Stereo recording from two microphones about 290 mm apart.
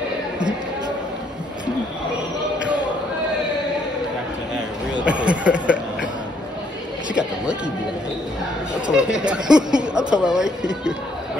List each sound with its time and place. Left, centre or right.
4.9 s speech: centre
8.9 s a woman's voice: centre
9.6 s a sound: centre
9.9 s a woman's voice: centre